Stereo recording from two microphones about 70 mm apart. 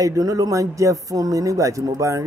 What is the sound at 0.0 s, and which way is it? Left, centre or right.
Speech, right.